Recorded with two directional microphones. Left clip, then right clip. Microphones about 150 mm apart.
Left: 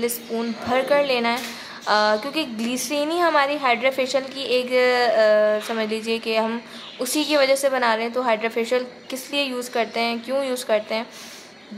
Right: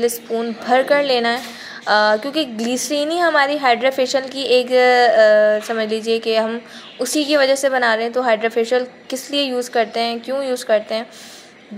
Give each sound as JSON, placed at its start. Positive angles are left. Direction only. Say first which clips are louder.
{"t": 0.7, "sound": "a woman's voice", "louder": "right 5 dB", "side_deg": -20}